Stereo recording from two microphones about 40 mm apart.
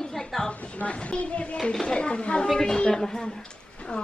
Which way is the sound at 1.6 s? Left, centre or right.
Left.